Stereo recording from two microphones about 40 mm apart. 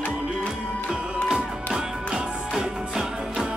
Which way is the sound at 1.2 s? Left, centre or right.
Centre.